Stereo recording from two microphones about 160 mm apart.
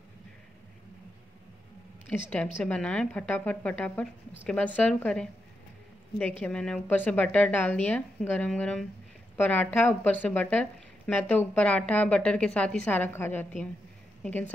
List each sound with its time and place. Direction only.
2.0 s a woman's voice: 10° left (ahead or behind)
6.4 s a woman's voice: 5° left (ahead or behind)